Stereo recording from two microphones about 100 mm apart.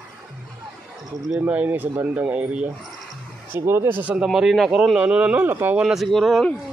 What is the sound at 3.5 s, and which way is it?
Speech, 25° right (ahead or behind).